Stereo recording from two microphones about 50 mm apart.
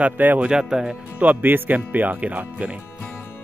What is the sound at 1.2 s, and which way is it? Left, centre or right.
Speech, right.